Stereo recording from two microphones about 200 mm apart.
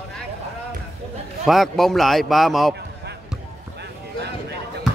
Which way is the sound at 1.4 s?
Centre (ahead or behind).